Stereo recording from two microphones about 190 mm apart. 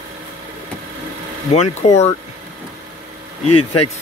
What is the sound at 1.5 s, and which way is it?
Speech, 35° left (ahead or behind).